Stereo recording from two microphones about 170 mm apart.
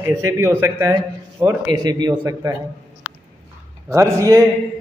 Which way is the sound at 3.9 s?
15° right (ahead or behind).